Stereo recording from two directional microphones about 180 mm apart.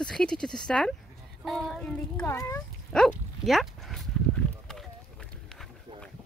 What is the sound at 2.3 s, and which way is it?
Speech, 15° left (ahead or behind).